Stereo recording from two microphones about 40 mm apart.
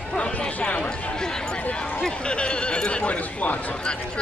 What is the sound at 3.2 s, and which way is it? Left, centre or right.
Speech, left.